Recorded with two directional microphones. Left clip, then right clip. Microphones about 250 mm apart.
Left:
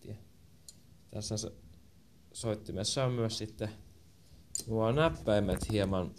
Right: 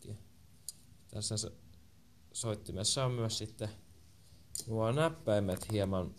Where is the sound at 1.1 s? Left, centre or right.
Centre.